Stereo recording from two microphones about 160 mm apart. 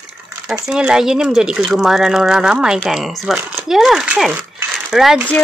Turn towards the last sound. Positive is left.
turn(degrees=0)  # may be behind; listen again after turning